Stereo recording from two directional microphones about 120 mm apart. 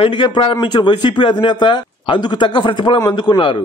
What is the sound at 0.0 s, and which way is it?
A man's voice, 45° left (ahead or behind).